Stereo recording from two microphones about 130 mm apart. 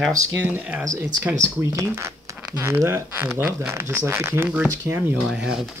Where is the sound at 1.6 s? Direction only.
25° right (ahead or behind).